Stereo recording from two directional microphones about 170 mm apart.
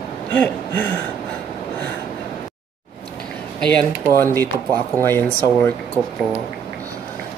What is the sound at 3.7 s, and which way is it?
A man's voice, 5° left (ahead or behind).